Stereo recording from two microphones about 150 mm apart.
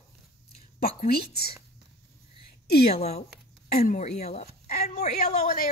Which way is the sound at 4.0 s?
45° left (ahead or behind).